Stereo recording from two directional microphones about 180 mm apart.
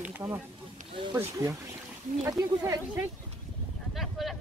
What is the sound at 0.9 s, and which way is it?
Speech, 30° right (ahead or behind).